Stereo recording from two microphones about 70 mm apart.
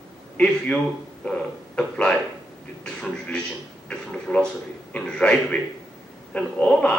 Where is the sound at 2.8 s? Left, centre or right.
Centre.